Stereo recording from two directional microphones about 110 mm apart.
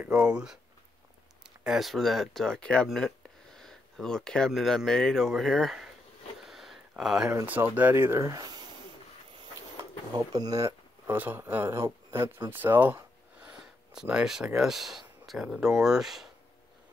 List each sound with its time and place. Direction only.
0.0 s speech: 10° right (ahead or behind)
1.6 s speech: 5° right (ahead or behind)
6.4 s a sound: centre (ahead or behind)
7.4 s speech: 15° right (ahead or behind); by 10.7 s 35° right (ahead or behind)
11.1 s speech: 20° right (ahead or behind)
12.4 s a sound: 20° right (ahead or behind)
14.0 s speech: 5° right (ahead or behind)